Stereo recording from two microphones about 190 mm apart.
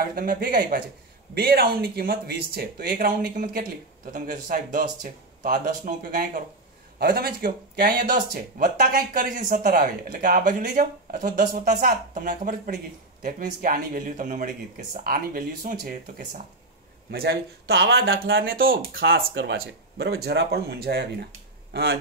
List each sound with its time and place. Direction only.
0.0 s speech: 50° right (ahead or behind)
7.0 s speech: 55° right (ahead or behind)
17.1 s speech: 55° right (ahead or behind)
19.1 s speech: 65° right (ahead or behind)